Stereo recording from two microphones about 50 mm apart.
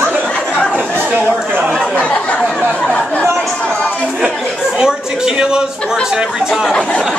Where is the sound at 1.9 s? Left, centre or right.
Left.